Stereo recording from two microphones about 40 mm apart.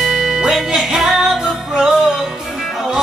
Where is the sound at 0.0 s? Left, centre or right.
Centre.